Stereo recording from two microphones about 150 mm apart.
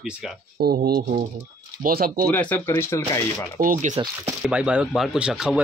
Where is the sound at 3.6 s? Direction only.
65° right (ahead or behind).